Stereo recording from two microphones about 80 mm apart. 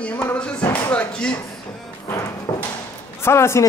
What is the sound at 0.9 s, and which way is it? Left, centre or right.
Speech, centre.